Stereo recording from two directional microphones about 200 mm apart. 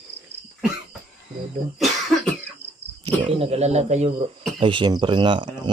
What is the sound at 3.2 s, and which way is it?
Speech, 30° right (ahead or behind).